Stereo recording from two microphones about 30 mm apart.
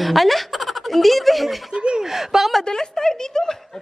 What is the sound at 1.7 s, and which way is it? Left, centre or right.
Chuckle, right.